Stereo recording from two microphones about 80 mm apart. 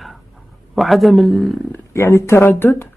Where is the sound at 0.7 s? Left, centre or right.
Centre.